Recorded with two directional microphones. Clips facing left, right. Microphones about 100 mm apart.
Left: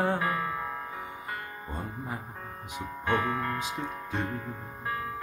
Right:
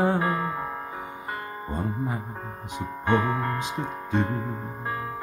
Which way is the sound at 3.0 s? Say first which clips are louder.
Right 4 dB; 30° right (ahead or behind).